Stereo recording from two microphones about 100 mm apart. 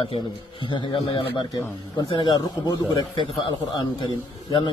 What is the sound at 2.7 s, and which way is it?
Speech, 45° left (ahead or behind).